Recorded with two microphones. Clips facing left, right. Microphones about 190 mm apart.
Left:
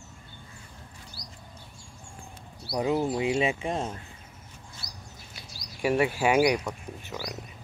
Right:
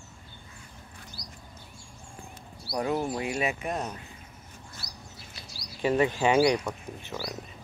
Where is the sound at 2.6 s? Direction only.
20° left (ahead or behind).